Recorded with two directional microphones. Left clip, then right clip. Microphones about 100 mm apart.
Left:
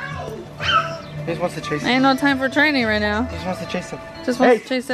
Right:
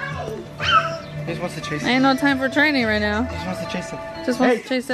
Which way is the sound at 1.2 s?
30° left (ahead or behind).